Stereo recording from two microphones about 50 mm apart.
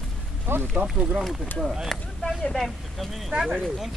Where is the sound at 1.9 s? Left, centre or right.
Centre.